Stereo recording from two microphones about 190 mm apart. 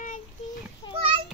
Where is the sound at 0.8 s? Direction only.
25° left (ahead or behind).